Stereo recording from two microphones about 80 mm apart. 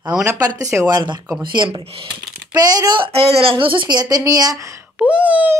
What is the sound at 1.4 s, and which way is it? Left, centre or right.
A woman's voice, right.